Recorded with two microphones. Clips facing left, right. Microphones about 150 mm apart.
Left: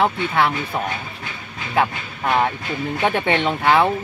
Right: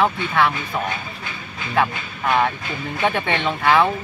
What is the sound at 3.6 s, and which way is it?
Speech, 20° left (ahead or behind).